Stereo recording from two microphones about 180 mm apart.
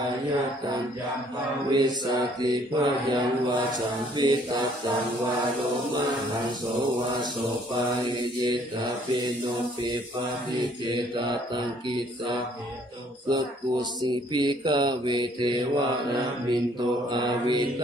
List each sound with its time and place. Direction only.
1.7 s mantra: 25° right (ahead or behind)
8.1 s mantra: 25° right (ahead or behind)
10.5 s mantra: 25° right (ahead or behind)
13.3 s mantra: 25° right (ahead or behind)
17.1 s mantra: 25° right (ahead or behind)